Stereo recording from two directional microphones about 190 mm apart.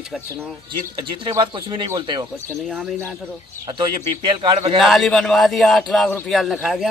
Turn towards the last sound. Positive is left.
turn(degrees=0)  # may be behind; listen again after turning